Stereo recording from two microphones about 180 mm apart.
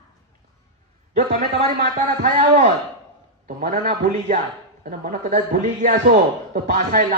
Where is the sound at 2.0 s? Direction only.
40° right (ahead or behind).